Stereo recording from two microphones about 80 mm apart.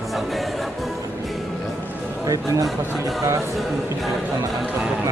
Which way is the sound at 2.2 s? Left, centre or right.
Right.